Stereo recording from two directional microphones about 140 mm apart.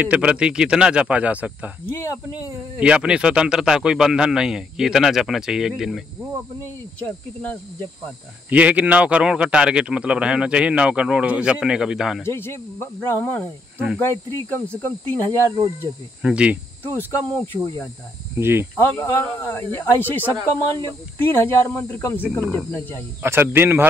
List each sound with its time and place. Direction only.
0.0 s a man's voice: 10° right (ahead or behind)
1.9 s speech: 20° left (ahead or behind)
2.8 s speech: 5° right (ahead or behind)
7.1 s speech: 10° left (ahead or behind)
8.5 s a man's voice: 10° right (ahead or behind)
12.2 s speech: 15° left (ahead or behind)
16.2 s a man's voice: 5° right (ahead or behind)
16.8 s speech: 15° left (ahead or behind)
18.4 s a man's voice: 15° right (ahead or behind)
18.8 s speech: 15° left (ahead or behind)
23.2 s a man's voice: 15° right (ahead or behind)